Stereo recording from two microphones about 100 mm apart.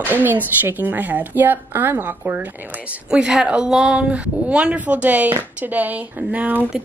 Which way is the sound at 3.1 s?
5° right (ahead or behind).